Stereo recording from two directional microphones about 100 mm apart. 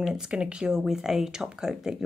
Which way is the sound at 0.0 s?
5° right (ahead or behind).